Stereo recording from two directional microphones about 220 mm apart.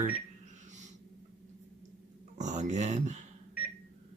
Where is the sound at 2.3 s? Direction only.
30° right (ahead or behind).